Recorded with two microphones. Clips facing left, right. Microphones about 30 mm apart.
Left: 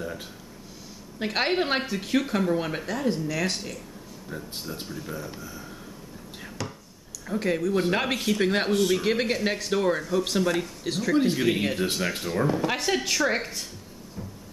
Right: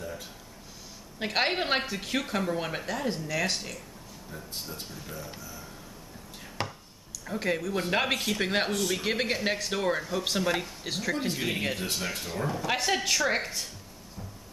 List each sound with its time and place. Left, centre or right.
0.0 s a sound: centre
1.2 s speech: centre
4.6 s speech: centre
6.6 s speech: right
7.2 s speech: centre
8.7 s speech: centre
9.0 s speech: centre
11.1 s speech: centre
11.8 s speech: centre
12.6 s speech: centre